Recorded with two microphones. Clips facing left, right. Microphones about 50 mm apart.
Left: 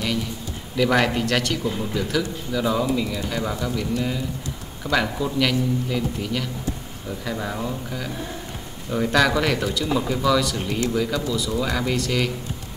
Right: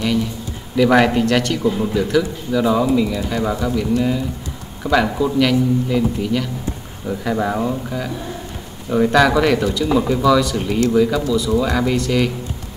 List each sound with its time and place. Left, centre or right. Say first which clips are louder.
0.7 s a man's voice: right 6 dB; centre
1.6 s speech: right 7 dB; centre
4.8 s a man's voice: right 6 dB; centre
7.1 s speech: right 8 dB; right; by 12.3 s centre